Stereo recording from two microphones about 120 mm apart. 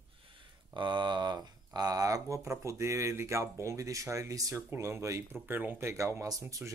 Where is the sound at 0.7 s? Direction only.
40° right (ahead or behind).